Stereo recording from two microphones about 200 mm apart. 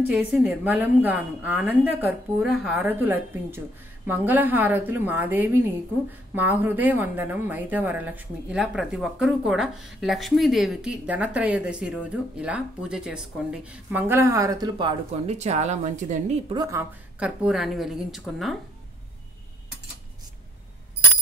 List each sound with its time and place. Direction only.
0.1 s a woman's voice: 5° right (ahead or behind); by 16.3 s 35° right (ahead or behind)
16.4 s a woman's voice: 20° right (ahead or behind)
17.2 s a woman's voice: 5° right (ahead or behind)